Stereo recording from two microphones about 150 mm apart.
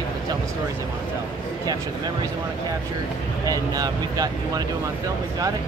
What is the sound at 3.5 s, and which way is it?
Speech, 25° right (ahead or behind).